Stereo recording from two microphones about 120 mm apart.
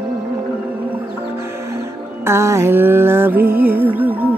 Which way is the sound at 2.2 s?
20° right (ahead or behind).